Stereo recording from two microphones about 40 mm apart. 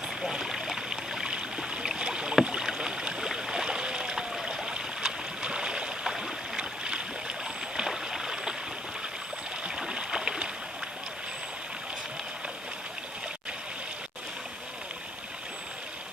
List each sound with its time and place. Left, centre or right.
0.3 s a sound: centre
2.0 s rowboat: right
2.4 s boat: centre
4.5 s stream: right
6.5 s boat: right
9.8 s a sound: centre